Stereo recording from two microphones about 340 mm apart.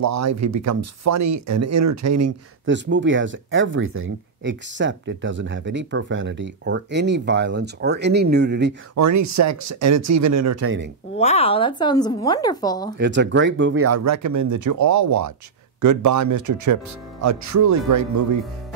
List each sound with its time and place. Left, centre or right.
0.0 s speech: right
2.6 s speech: right
8.9 s speech: right
11.1 s a woman's voice: centre
12.9 s speech: right